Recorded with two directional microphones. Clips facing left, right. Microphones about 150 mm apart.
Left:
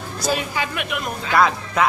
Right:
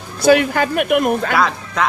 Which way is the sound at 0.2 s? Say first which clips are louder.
Right 11 dB; 65° right (ahead or behind).